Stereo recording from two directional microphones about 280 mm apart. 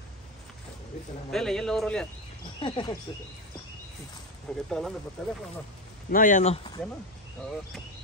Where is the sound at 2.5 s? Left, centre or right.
Centre.